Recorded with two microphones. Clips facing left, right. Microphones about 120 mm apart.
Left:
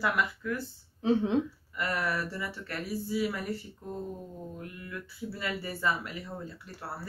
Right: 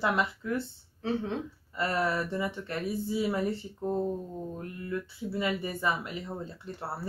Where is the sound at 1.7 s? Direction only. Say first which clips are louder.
Right 3 dB; 25° right (ahead or behind).